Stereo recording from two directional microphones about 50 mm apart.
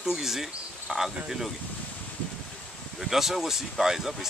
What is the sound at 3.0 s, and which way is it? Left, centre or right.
Speech, centre.